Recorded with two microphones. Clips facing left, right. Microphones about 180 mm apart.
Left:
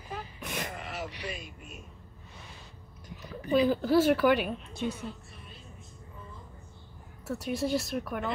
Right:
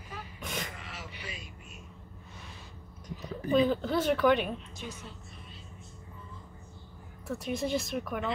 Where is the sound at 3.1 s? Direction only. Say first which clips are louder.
Right 1 dB; 5° left (ahead or behind).